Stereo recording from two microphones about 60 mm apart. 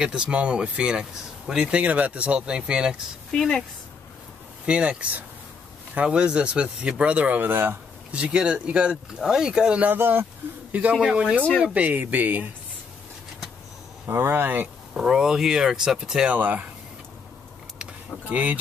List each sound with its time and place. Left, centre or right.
0.0 s speech: centre
3.3 s speech: centre
4.6 s speech: centre
7.5 s speech: right
8.1 s speech: centre
9.8 s speech: right
10.7 s speech: right
11.0 s speech: centre
11.6 s speech: right
14.0 s speech: right
15.0 s speech: centre
16.3 s speech: right
18.3 s speech: right